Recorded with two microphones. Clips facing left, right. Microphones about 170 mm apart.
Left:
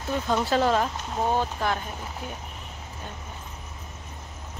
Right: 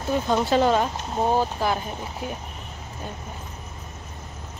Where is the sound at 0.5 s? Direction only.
Centre (ahead or behind).